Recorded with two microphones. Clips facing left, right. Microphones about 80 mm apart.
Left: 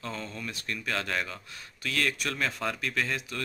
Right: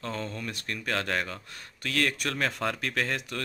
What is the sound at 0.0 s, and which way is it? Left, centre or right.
A man's voice, right.